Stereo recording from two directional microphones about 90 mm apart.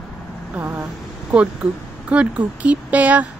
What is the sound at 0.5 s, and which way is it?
Vehicle, 20° right (ahead or behind).